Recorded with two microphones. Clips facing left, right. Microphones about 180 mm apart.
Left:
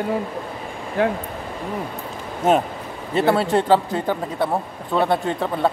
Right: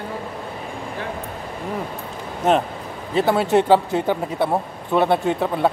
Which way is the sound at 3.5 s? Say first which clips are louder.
Right 2 dB; 20° right (ahead or behind).